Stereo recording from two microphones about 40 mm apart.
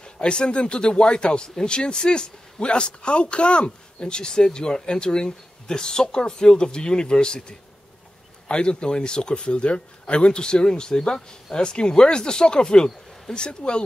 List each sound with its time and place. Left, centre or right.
0.0 s speech: left